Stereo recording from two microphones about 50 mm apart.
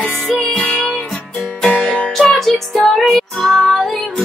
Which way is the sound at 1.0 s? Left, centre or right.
Centre.